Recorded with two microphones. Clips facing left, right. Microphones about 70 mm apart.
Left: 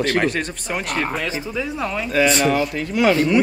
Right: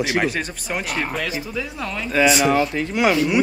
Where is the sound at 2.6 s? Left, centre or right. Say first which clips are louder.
Even; centre.